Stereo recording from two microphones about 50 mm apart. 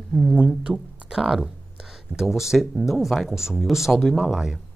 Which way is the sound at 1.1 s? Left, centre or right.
Centre.